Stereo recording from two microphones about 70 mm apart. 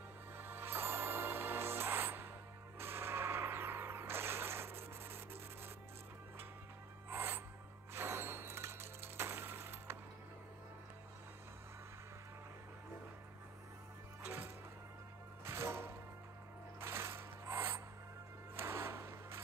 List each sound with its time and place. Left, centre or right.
0.4 s music: right
2.8 s gunshot: right
7.1 s music: right
7.9 s a sound: right
14.2 s music: right
16.8 s mechanisms: right
18.6 s wood: right